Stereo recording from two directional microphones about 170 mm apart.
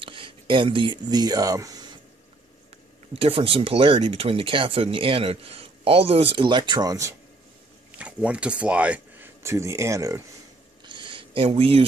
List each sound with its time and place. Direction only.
0.0 s speech: 30° right (ahead or behind)
3.1 s speech: 35° right (ahead or behind)
8.0 s speech: 5° right (ahead or behind)
10.9 s a sound: 30° right (ahead or behind)